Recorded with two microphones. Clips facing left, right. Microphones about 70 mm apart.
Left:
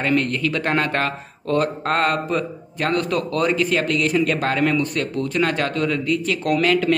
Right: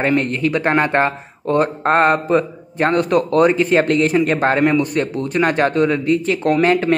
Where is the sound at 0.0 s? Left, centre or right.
Right.